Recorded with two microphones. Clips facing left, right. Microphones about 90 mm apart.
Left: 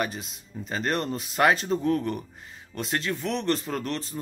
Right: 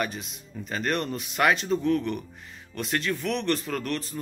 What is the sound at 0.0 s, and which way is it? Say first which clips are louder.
Speech: left 1 dB; 30° left (ahead or behind).